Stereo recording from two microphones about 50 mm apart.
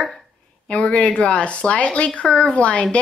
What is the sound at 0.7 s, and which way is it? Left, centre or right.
A woman's voice, left.